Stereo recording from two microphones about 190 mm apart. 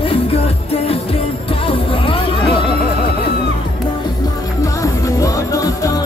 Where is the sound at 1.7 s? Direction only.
30° left (ahead or behind).